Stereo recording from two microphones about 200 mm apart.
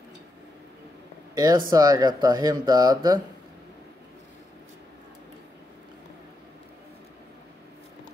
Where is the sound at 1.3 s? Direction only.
20° right (ahead or behind).